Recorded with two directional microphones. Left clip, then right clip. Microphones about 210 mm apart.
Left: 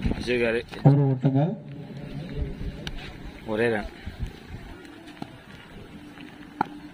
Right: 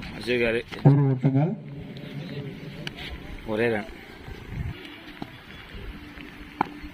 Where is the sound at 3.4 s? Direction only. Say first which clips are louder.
Even; 5° left (ahead or behind).